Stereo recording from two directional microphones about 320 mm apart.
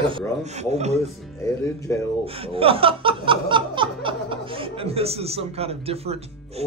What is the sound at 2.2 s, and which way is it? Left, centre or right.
Speech, centre.